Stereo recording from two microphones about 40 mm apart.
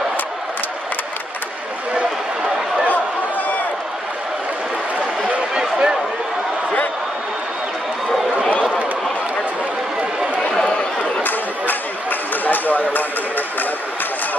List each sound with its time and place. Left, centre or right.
2.9 s chatter: left
5.5 s a sound: centre
10.5 s chatter: left
11.2 s chatter: left